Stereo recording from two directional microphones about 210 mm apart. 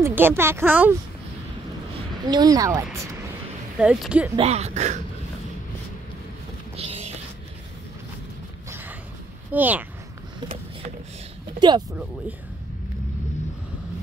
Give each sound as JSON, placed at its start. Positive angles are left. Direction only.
{"t": 0.0, "sound": "a sound", "side_deg": -10}
{"t": 0.4, "sound": "speech", "side_deg": -10}
{"t": 2.2, "sound": "speech", "side_deg": -20}
{"t": 3.7, "sound": "speech", "side_deg": 0}
{"t": 4.4, "sound": "speech", "side_deg": -30}
{"t": 6.8, "sound": "music", "side_deg": -30}
{"t": 8.6, "sound": "a sound", "side_deg": -10}
{"t": 9.5, "sound": "speech", "side_deg": -10}